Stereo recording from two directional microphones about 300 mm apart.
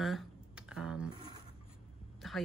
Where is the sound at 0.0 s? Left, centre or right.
Centre.